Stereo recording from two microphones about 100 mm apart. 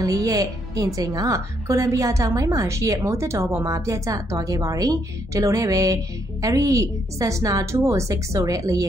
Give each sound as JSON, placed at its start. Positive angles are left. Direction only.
{"t": 0.0, "sound": "a woman's voice", "side_deg": -35}